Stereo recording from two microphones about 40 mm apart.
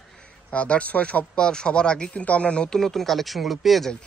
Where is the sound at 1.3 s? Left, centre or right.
Left.